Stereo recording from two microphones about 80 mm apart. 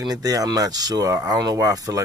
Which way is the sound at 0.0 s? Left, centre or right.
Right.